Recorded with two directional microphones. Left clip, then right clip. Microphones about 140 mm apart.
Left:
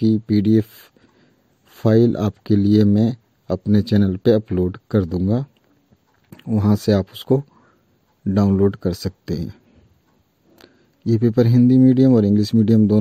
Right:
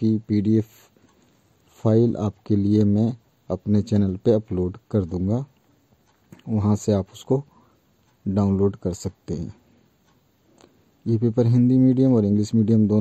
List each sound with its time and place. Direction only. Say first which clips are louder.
0.0 s speech: left 4 dB; 30° left (ahead or behind)
10.6 s speech: left 5 dB; 30° left (ahead or behind)